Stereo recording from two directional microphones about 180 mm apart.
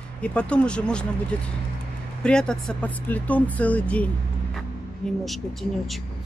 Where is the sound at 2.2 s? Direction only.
5° left (ahead or behind).